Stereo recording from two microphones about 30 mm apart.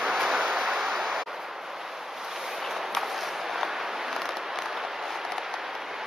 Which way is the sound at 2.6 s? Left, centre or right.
Centre.